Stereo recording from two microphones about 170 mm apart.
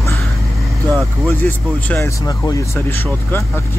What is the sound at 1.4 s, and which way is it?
Speech, 15° left (ahead or behind).